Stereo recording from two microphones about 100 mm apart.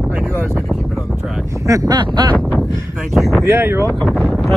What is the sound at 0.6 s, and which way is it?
Speech, centre (ahead or behind).